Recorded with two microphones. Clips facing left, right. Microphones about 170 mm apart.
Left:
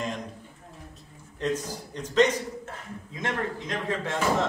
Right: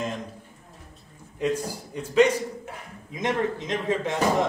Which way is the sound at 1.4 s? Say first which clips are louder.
Right 3 dB; 10° right (ahead or behind).